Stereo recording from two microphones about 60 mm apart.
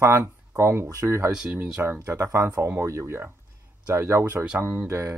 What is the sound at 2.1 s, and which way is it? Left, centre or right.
Speech, right.